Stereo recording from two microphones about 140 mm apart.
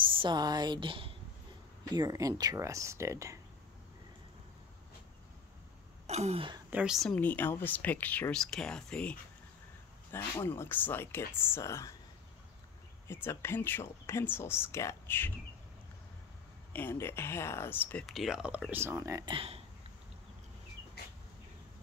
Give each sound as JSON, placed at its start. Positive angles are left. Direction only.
{"t": 0.0, "sound": "a woman's voice", "side_deg": -35}
{"t": 2.0, "sound": "speech", "side_deg": -25}
{"t": 6.0, "sound": "a sound", "side_deg": -50}
{"t": 6.7, "sound": "speech", "side_deg": -5}
{"t": 7.2, "sound": "speech", "side_deg": 15}
{"t": 10.4, "sound": "speech", "side_deg": 15}
{"t": 13.1, "sound": "speech", "side_deg": 15}
{"t": 16.7, "sound": "speech", "side_deg": 15}
{"t": 18.0, "sound": "speech", "side_deg": 0}
{"t": 18.7, "sound": "speech", "side_deg": -15}
{"t": 19.2, "sound": "speech", "side_deg": -40}